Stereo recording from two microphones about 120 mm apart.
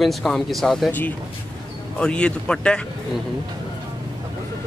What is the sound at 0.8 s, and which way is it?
Speech, 15° left (ahead or behind).